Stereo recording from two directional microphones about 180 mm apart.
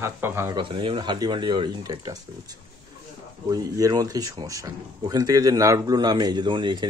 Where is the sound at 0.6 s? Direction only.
25° right (ahead or behind).